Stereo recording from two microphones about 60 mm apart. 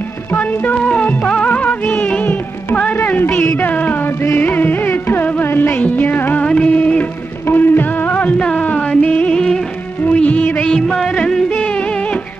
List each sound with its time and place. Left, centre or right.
0.5 s music: left
0.7 s music: centre; by 5.3 s left
5.4 s music of bollywood: left
6.4 s music of bollywood: centre
7.4 s music: left; by 9.7 s centre
10.0 s music of bollywood: left
10.7 s music: centre